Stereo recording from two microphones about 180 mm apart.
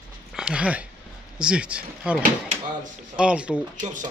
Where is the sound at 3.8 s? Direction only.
45° right (ahead or behind).